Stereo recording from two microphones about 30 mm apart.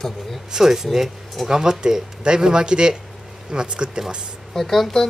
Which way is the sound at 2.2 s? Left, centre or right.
Right.